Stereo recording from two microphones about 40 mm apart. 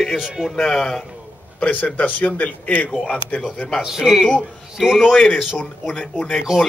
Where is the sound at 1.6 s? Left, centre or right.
Left.